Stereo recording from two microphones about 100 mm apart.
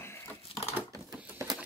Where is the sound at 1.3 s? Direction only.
40° right (ahead or behind).